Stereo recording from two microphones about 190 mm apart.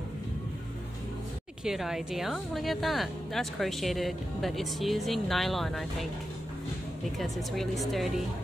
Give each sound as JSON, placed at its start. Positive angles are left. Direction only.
{"t": 1.6, "sound": "a woman's voice", "side_deg": 0}
{"t": 7.2, "sound": "a woman's voice", "side_deg": 0}